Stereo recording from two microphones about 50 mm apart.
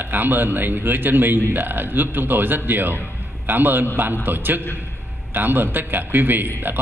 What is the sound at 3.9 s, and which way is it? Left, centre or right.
A man's voice, right.